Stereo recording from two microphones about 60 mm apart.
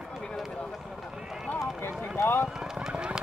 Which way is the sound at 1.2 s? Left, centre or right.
Centre.